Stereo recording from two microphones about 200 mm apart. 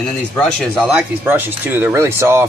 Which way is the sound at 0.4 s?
Centre (ahead or behind).